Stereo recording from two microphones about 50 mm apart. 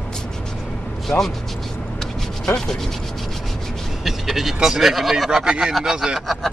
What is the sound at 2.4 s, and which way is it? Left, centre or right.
Rub, centre.